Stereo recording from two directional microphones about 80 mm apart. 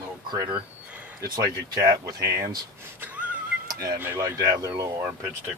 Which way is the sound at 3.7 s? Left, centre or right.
Right.